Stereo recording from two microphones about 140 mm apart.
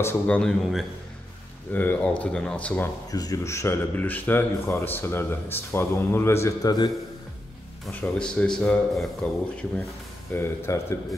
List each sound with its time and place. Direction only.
0.0 s speech: 20° left (ahead or behind)
0.4 s a man's voice: 5° left (ahead or behind)
3.1 s speech: 25° left (ahead or behind)
7.9 s speech: 10° left (ahead or behind)
10.3 s speech: 15° left (ahead or behind)